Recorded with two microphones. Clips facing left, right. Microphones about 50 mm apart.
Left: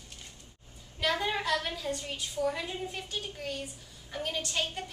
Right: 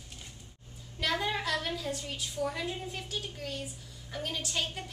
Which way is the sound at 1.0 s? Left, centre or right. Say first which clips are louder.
Left 1 dB; centre.